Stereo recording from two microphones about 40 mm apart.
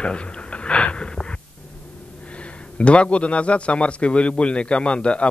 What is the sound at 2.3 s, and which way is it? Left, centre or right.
A man's voice, left.